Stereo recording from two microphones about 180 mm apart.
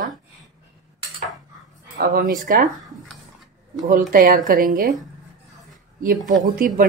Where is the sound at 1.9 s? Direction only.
55° right (ahead or behind).